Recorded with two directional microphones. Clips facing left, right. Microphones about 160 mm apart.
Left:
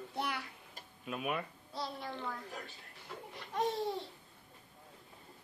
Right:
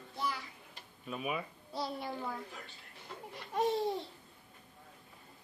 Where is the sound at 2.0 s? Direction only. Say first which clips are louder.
Right 2 dB; 15° right (ahead or behind).